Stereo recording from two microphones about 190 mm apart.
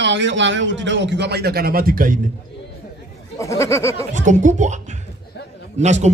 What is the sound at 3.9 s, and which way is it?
A woman's voice, 40° right (ahead or behind).